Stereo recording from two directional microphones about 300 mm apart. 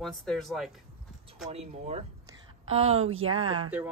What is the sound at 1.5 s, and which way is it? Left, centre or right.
A woman's voice, right.